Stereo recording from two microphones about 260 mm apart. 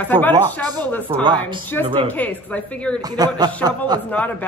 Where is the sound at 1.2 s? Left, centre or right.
Centre.